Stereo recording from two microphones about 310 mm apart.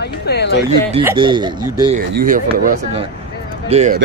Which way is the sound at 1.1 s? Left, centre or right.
Centre.